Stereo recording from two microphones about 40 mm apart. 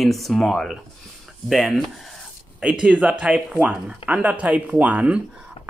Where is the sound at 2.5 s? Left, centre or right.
Right.